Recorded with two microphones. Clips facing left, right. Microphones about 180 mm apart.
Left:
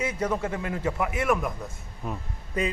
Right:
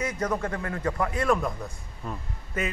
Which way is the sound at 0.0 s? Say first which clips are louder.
Left 1 dB; 10° left (ahead or behind).